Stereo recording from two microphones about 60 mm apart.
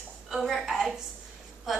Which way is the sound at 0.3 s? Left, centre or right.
Centre.